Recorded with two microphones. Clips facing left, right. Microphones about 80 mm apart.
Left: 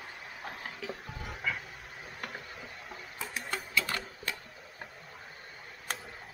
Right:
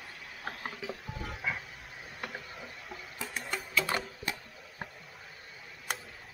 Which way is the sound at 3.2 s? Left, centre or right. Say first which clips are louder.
Even; centre.